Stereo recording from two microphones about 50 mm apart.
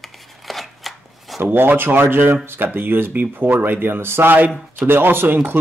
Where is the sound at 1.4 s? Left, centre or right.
Right.